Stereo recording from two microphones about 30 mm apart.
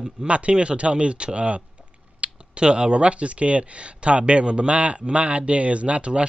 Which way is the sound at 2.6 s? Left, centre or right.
Right.